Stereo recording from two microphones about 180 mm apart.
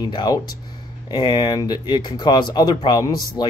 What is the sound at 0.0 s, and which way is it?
Speech, 20° left (ahead or behind).